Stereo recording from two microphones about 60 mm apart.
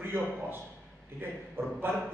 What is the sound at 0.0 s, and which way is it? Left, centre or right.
Speech, right.